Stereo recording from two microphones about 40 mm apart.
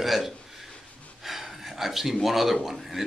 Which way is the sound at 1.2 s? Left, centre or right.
Centre.